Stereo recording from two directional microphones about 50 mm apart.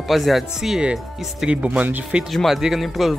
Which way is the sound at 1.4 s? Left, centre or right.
Right.